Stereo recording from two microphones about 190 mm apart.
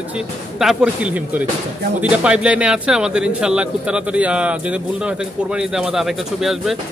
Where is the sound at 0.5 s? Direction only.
5° right (ahead or behind).